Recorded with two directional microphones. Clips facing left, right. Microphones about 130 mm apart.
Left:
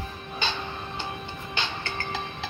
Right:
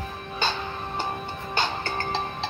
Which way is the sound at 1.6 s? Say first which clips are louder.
Right 5 dB; 35° right (ahead or behind).